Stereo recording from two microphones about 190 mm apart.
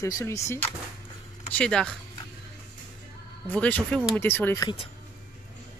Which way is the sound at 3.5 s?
5° left (ahead or behind).